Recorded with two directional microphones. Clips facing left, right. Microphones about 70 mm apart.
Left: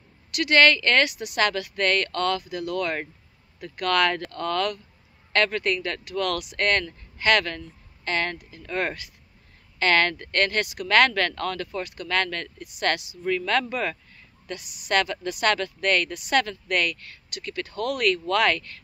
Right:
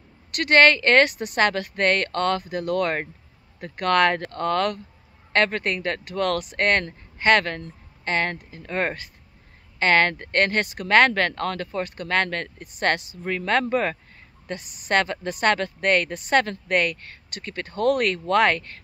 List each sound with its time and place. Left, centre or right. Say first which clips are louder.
0.3 s speech: right 2 dB; right